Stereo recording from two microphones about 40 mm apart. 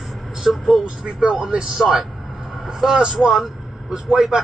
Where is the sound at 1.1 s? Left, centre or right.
Right.